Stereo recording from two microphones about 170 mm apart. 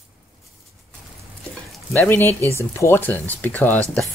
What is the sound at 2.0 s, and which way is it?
Speech, 10° left (ahead or behind).